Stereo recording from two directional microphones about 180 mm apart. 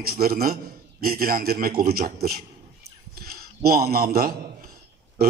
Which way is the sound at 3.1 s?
55° right (ahead or behind).